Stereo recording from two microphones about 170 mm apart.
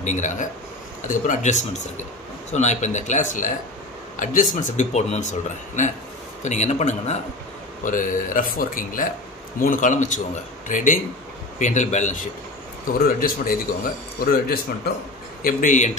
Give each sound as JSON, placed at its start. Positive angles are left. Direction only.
{"t": 0.0, "sound": "speech", "side_deg": 45}
{"t": 6.4, "sound": "speech", "side_deg": 45}
{"t": 13.0, "sound": "speech", "side_deg": 55}
{"t": 15.4, "sound": "speech", "side_deg": 50}